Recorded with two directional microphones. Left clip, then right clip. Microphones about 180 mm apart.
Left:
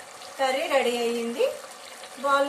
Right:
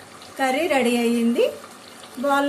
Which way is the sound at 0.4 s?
35° right (ahead or behind).